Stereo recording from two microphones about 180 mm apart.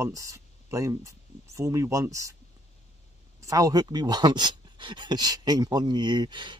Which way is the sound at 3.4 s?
20° right (ahead or behind).